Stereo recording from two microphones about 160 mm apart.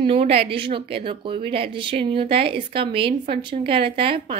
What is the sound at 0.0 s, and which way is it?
A woman's voice, 40° right (ahead or behind).